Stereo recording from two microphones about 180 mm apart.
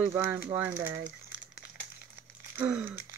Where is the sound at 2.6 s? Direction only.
10° right (ahead or behind).